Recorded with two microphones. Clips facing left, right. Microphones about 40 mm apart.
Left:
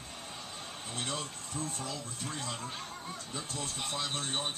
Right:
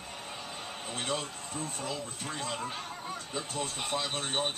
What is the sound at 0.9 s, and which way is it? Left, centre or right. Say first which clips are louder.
Speech: right 3 dB; right.